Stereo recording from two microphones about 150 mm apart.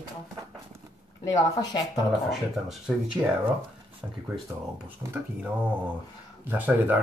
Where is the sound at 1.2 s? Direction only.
25° left (ahead or behind).